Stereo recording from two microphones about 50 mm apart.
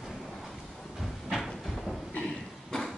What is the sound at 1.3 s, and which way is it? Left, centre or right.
Cupboard open or close, centre.